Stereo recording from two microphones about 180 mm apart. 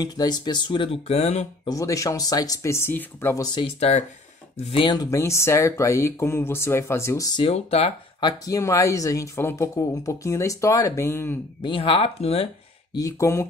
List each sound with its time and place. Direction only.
0.0 s speech: 20° left (ahead or behind)
1.7 s speech: 20° left (ahead or behind)
3.5 s speech: 35° left (ahead or behind); by 7.4 s 15° left (ahead or behind)
7.4 s speech: 35° left (ahead or behind)
8.3 s speech: 20° left (ahead or behind)
11.6 s speech: 30° left (ahead or behind)
12.9 s speech: 20° left (ahead or behind)